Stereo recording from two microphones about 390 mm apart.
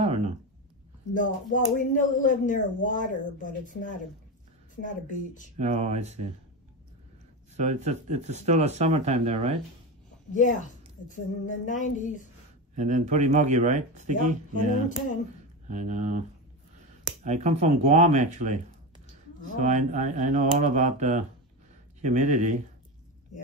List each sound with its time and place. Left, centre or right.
1.1 s speech: centre
5.6 s speech: centre
7.5 s speech: centre
11.1 s speech: centre
12.7 s speech: centre
17.2 s speech: centre